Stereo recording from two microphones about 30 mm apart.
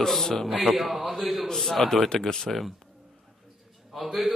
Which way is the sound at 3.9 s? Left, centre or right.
Centre.